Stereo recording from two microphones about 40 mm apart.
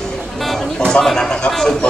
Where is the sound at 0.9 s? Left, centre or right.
Centre.